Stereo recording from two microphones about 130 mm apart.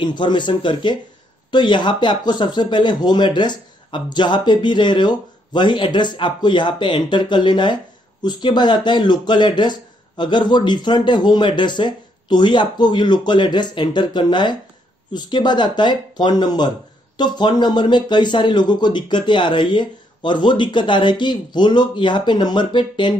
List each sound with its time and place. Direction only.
0.0 s speech: 35° left (ahead or behind)